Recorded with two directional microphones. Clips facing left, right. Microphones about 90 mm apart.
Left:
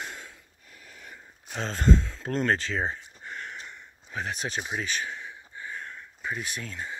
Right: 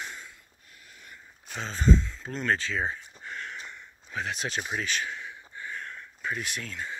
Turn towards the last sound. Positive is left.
turn(degrees=25)  # may be behind; listen again after turning